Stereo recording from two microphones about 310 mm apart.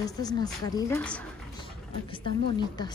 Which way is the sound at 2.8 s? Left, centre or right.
Centre.